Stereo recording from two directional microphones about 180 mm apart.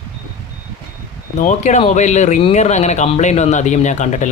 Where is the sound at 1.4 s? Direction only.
40° left (ahead or behind).